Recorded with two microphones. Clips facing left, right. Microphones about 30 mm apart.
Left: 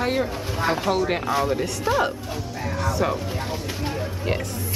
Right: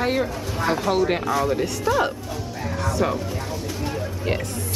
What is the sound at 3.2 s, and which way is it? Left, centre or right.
Music, centre.